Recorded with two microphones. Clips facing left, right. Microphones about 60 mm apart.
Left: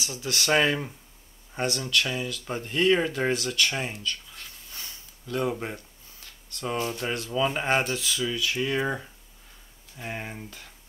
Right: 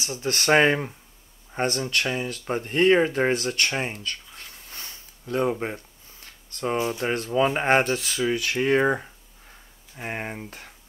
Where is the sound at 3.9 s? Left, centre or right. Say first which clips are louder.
Even; right.